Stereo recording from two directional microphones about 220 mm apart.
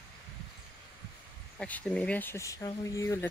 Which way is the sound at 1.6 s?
5° left (ahead or behind).